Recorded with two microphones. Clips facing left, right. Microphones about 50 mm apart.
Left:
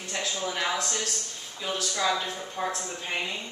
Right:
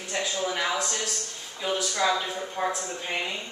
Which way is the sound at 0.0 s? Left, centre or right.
Centre.